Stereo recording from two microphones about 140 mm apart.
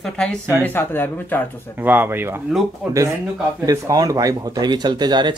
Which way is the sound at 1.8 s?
15° right (ahead or behind).